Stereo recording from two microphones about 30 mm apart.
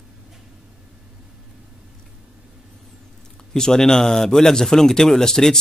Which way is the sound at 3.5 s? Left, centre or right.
Left.